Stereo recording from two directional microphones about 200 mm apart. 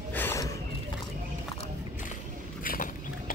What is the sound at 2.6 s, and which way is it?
Vehicle, 45° left (ahead or behind).